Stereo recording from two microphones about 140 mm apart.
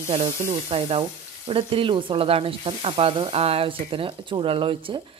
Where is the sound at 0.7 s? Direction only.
40° right (ahead or behind).